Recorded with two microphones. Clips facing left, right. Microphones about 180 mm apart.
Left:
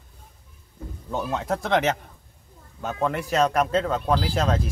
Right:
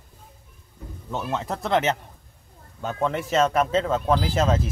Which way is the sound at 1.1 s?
Centre (ahead or behind).